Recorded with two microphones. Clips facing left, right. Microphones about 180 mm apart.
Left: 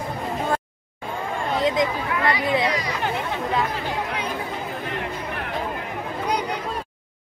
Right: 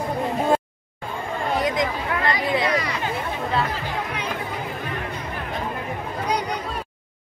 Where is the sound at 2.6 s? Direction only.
55° right (ahead or behind).